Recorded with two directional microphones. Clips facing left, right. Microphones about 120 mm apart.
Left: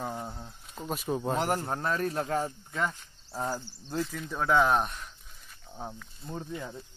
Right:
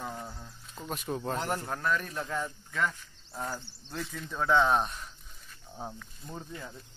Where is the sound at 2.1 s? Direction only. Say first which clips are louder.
Left 5 dB; 45° left (ahead or behind).